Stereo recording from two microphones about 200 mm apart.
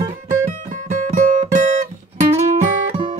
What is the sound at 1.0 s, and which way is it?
Guitar, 35° right (ahead or behind).